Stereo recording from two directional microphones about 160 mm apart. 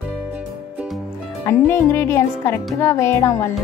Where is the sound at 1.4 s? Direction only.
15° left (ahead or behind).